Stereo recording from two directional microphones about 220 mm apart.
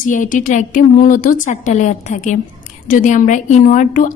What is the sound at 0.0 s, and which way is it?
A woman's voice, 35° left (ahead or behind).